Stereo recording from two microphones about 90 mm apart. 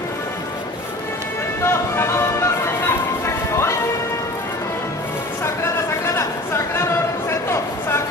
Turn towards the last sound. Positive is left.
turn(degrees=30)  # may be behind; listen again after turning